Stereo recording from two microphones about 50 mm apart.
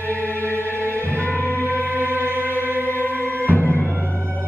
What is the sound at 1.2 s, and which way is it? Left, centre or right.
Music, left.